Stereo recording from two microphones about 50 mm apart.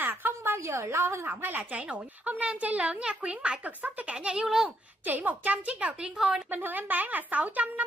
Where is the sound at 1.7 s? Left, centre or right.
Right.